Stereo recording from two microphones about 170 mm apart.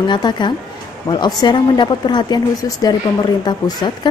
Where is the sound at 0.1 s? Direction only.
25° left (ahead or behind).